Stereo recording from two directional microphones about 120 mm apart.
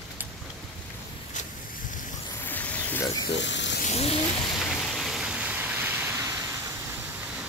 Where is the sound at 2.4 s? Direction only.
15° left (ahead or behind).